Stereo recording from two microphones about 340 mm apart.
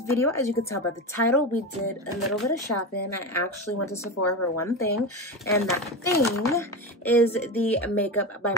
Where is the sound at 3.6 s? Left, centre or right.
Left.